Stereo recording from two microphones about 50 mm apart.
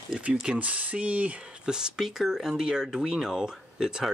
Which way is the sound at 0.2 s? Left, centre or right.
Right.